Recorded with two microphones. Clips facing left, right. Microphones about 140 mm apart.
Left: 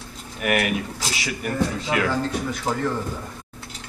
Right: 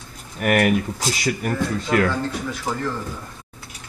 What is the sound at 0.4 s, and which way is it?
Speech, 45° right (ahead or behind).